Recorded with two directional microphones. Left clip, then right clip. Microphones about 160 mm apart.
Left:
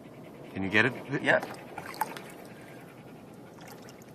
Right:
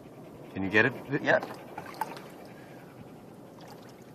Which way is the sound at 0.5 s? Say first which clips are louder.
Right 1 dB; 20° right (ahead or behind).